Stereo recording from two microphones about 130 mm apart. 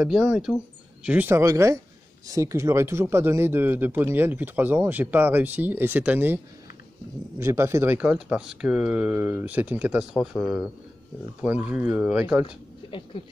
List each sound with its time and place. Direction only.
0.0 s speech: 5° right (ahead or behind)
12.4 s speech: 40° left (ahead or behind)